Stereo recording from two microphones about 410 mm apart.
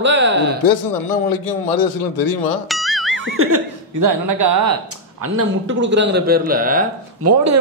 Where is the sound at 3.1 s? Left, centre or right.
Right.